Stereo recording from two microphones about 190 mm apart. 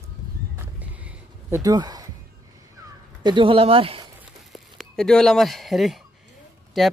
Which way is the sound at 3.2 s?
25° right (ahead or behind).